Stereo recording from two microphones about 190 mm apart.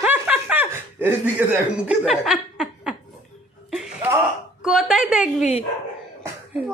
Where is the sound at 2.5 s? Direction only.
Centre (ahead or behind).